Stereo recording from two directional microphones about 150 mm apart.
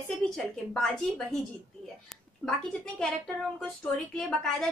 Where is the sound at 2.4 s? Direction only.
5° left (ahead or behind).